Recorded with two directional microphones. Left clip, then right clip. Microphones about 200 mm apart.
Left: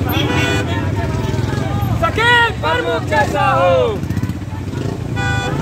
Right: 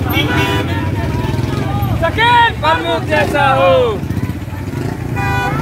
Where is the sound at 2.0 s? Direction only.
45° left (ahead or behind).